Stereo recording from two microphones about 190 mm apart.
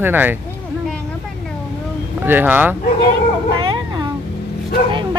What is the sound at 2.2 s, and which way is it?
Speech, 10° right (ahead or behind).